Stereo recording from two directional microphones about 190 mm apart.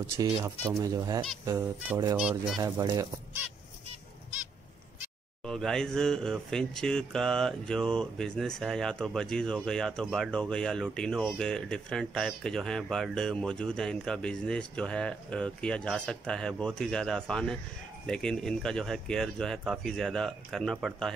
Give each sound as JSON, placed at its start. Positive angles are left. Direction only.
{"t": 0.2, "sound": "speech", "side_deg": -20}
{"t": 2.1, "sound": "speech", "side_deg": -5}
{"t": 2.6, "sound": "speech", "side_deg": -20}
{"t": 5.4, "sound": "speech", "side_deg": 0}